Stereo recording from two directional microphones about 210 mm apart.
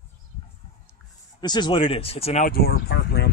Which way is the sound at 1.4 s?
20° left (ahead or behind).